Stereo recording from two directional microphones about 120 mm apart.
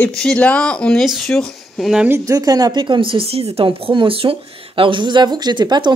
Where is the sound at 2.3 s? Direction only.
30° right (ahead or behind).